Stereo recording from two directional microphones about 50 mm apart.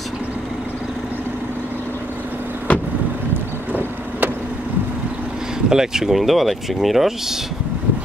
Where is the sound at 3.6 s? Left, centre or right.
Right.